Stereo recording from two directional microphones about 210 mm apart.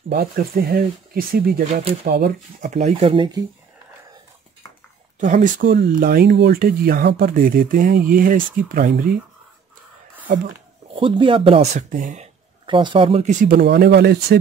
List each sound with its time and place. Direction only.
0.1 s speech: 50° right (ahead or behind)
2.7 s speech: 30° right (ahead or behind)
5.2 s speech: 40° right (ahead or behind)
10.2 s speech: 45° right (ahead or behind)
10.9 s speech: 25° right (ahead or behind)
12.6 s speech: 25° right (ahead or behind)
13.6 s speech: 55° right (ahead or behind)